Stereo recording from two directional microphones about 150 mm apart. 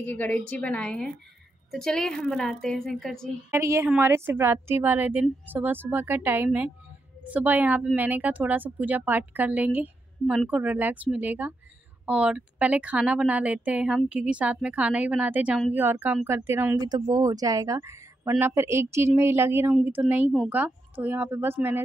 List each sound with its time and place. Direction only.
0.0 s a woman's voice: 10° left (ahead or behind)
3.5 s speech: 20° right (ahead or behind)
16.8 s speech: 25° right (ahead or behind)